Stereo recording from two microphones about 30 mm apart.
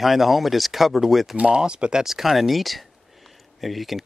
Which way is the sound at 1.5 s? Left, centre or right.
Right.